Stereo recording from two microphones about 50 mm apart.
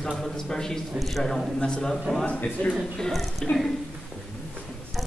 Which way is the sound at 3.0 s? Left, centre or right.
Centre.